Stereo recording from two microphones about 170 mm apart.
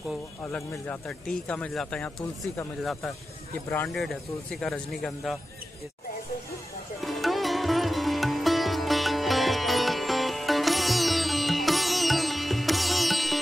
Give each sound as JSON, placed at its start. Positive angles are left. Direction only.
{"t": 0.5, "sound": "speech", "side_deg": 5}
{"t": 7.0, "sound": "sitar", "side_deg": 0}